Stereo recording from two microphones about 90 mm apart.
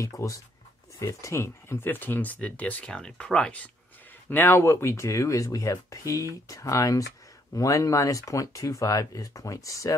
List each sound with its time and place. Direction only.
0.0 s speech: 35° left (ahead or behind); by 3.7 s 10° left (ahead or behind)
4.3 s speech: 25° left (ahead or behind)